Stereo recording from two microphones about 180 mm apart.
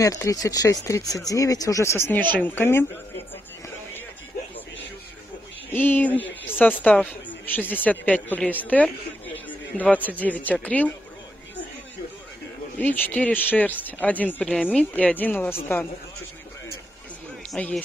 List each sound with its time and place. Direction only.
0.0 s speech: 20° left (ahead or behind)
5.7 s a man's voice: 10° left (ahead or behind)
12.7 s speech: 10° left (ahead or behind)
17.5 s speech: 5° left (ahead or behind)